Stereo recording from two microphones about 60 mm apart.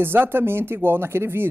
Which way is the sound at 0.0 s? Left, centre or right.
Right.